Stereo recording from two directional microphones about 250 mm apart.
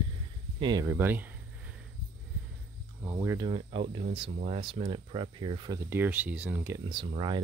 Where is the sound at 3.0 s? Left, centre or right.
Centre.